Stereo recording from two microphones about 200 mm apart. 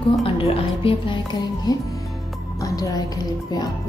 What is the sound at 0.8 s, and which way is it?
A woman's voice, 25° left (ahead or behind).